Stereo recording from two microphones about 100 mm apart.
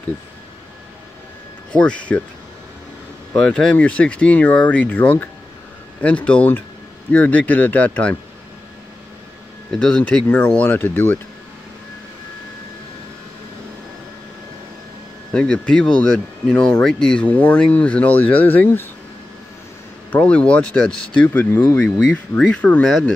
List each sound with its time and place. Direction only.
1.7 s speech: 10° left (ahead or behind)
3.3 s speech: 10° left (ahead or behind)
9.7 s speech: 5° left (ahead or behind)
10.2 s speech: 20° left (ahead or behind)
15.3 s speech: 10° left (ahead or behind)
20.1 s speech: 15° left (ahead or behind)
21.3 s speech: 20° left (ahead or behind)
22.1 s speech: 10° left (ahead or behind)